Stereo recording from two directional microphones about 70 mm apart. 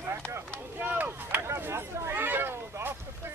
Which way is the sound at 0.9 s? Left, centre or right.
Right.